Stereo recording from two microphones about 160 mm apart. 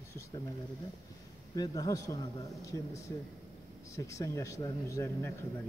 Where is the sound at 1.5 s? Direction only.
25° left (ahead or behind).